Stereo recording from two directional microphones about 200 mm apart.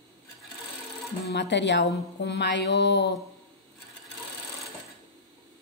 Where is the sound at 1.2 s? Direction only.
60° left (ahead or behind).